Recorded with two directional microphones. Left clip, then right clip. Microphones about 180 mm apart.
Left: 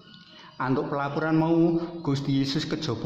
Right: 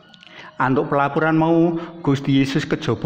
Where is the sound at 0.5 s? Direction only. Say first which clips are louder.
Right 9 dB; 30° right (ahead or behind).